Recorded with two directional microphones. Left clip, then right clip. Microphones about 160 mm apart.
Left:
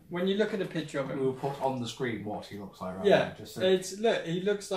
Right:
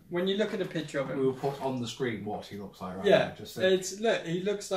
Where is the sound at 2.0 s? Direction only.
25° left (ahead or behind).